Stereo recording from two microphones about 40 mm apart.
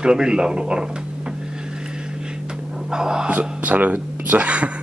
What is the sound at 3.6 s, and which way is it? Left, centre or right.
Speech, right.